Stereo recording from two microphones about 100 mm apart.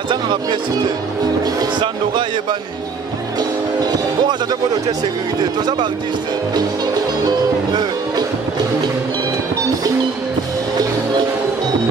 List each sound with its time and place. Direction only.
0.1 s speech: 50° right (ahead or behind)
3.3 s music: 45° right (ahead or behind)
7.2 s speech: 40° right (ahead or behind)